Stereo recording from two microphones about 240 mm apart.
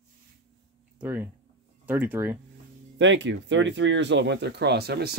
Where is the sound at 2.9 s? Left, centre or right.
Right.